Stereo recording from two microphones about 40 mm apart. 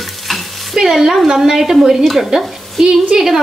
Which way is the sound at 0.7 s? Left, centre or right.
Centre.